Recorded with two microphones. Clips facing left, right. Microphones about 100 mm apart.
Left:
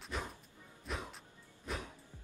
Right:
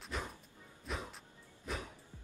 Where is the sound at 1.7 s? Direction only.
Centre (ahead or behind).